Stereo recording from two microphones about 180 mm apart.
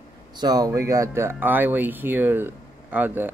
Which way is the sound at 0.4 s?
20° right (ahead or behind).